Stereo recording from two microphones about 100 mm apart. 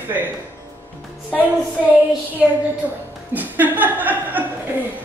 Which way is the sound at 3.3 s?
15° right (ahead or behind).